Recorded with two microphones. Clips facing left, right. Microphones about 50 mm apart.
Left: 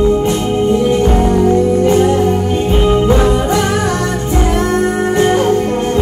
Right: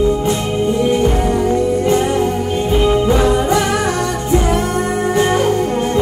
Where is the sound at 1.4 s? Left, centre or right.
Left.